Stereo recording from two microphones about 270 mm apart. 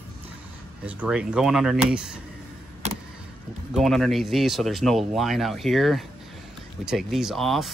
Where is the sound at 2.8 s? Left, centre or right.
Right.